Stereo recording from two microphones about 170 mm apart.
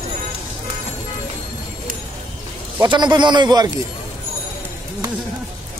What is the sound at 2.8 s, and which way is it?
Speech, 25° right (ahead or behind).